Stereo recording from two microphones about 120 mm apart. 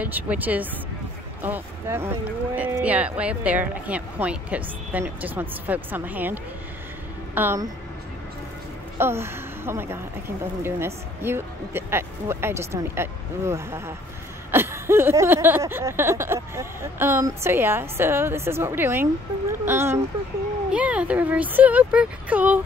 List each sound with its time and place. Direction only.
0.0 s speech: 15° right (ahead or behind)
8.9 s a woman's voice: 20° right (ahead or behind)